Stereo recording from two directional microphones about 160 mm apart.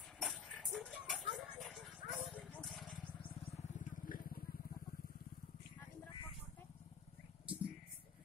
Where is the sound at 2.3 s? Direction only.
5° left (ahead or behind).